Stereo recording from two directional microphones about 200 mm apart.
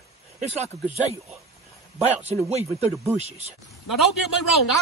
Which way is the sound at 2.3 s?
30° right (ahead or behind).